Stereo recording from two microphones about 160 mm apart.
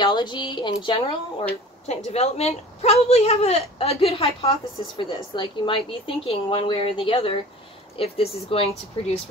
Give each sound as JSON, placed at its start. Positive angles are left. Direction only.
{"t": 0.0, "sound": "a woman's voice", "side_deg": 30}